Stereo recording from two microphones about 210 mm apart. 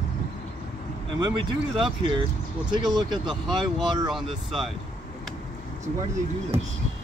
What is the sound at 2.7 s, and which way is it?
Speech, 20° right (ahead or behind).